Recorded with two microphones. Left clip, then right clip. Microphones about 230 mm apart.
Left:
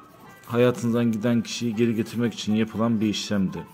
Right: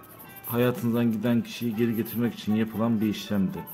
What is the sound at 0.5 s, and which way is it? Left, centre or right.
Speech, centre.